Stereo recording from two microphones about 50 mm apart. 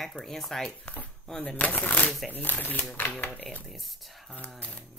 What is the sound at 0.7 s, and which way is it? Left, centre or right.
Speech, left.